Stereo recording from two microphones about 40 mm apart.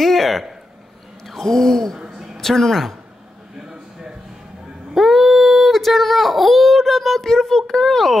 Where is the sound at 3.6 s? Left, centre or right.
Centre.